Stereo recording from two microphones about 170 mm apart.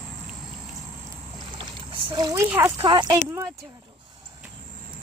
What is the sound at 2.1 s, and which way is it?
Speech, 20° right (ahead or behind).